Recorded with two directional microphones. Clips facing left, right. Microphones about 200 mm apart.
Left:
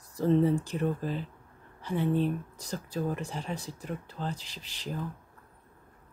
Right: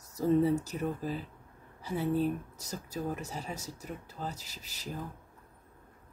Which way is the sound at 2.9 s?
40° right (ahead or behind).